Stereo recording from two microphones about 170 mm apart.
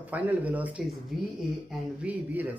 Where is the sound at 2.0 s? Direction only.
10° right (ahead or behind).